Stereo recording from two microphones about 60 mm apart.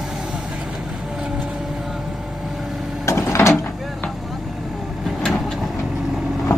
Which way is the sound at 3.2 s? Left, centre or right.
Left.